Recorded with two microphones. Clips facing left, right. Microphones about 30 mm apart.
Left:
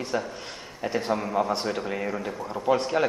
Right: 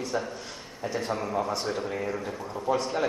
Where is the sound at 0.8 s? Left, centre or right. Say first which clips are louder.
Left 3 dB; left.